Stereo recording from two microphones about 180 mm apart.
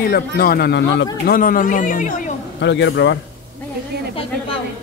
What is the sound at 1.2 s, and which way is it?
Speech, 55° left (ahead or behind).